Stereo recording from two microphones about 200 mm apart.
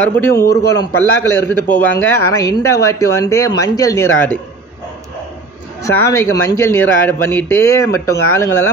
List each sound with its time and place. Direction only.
0.2 s speech: 15° left (ahead or behind)
5.8 s speech: 15° left (ahead or behind)